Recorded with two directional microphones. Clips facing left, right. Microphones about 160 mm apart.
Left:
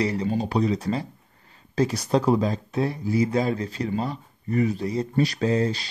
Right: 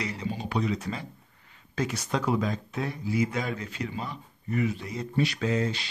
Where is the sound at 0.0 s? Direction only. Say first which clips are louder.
Left 9 dB; 35° left (ahead or behind).